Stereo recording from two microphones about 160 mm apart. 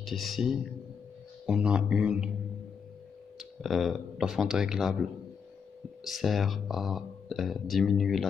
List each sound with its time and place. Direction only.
0.0 s speech: centre (ahead or behind)
3.3 s speech: centre (ahead or behind)
6.0 s speech: centre (ahead or behind)